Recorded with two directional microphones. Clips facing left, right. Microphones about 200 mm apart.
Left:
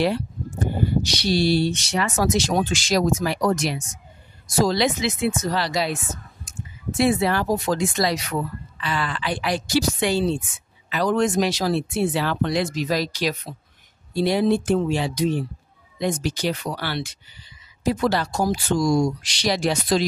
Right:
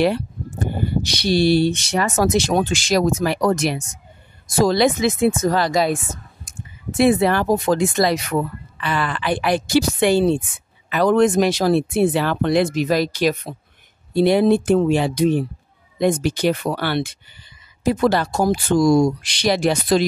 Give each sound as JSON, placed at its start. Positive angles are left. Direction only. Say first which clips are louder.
{"t": 1.0, "sound": "speech", "louder": "right 7 dB", "side_deg": -55}